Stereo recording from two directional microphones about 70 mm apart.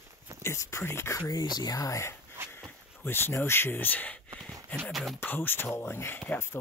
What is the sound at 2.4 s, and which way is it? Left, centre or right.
Dog, right.